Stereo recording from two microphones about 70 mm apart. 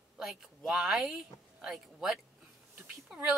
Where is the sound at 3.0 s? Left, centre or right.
Right.